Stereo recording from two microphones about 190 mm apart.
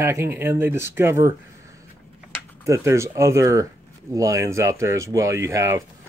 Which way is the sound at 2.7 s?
15° right (ahead or behind).